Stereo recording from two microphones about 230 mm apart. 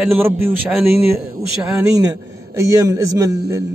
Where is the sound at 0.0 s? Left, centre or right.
Centre.